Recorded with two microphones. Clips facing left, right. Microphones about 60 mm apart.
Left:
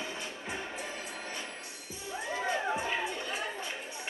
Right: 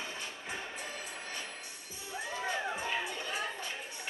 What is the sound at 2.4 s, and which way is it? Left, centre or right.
Music, left.